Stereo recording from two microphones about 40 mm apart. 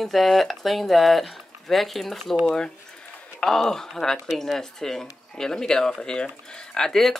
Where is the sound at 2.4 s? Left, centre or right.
Centre.